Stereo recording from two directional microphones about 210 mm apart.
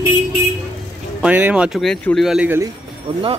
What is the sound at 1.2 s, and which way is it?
Speech, 5° right (ahead or behind).